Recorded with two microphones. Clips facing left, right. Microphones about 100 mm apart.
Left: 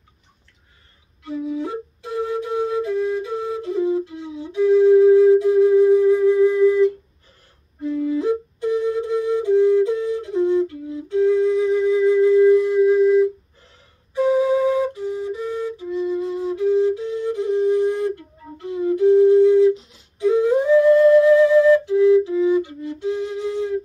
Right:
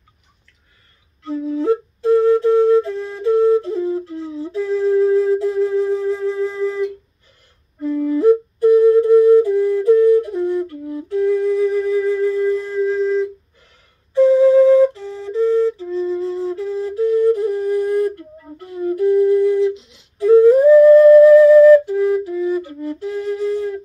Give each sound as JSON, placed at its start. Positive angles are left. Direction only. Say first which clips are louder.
{"t": 1.2, "sound": "flute", "louder": "right 6 dB", "side_deg": 15}
{"t": 7.8, "sound": "flute", "louder": "right 6 dB", "side_deg": 20}
{"t": 20.2, "sound": "a sound", "louder": "right 7 dB", "side_deg": 20}
{"t": 21.9, "sound": "flute", "louder": "left 3 dB", "side_deg": 20}